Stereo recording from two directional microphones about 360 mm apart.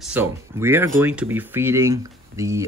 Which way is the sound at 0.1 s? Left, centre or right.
Centre.